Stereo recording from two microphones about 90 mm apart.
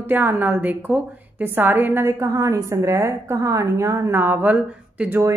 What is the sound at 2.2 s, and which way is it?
A woman's voice, 40° right (ahead or behind).